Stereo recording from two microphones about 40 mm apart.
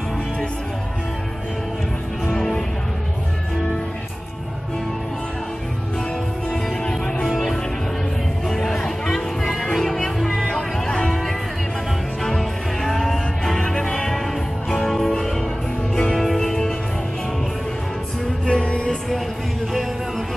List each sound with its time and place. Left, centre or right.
2.3 s music: centre
6.8 s music: left
7.2 s music: centre
10.4 s music: centre
18.4 s music: centre
18.9 s music: centre